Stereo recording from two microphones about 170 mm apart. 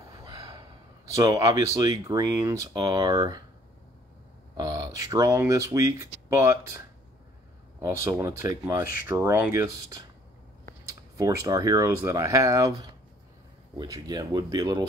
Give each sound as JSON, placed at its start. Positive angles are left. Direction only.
{"t": 0.1, "sound": "gasp", "side_deg": -25}
{"t": 1.1, "sound": "speech", "side_deg": -20}
{"t": 4.6, "sound": "speech", "side_deg": -20}
{"t": 7.8, "sound": "speech", "side_deg": -15}
{"t": 13.7, "sound": "speech", "side_deg": -20}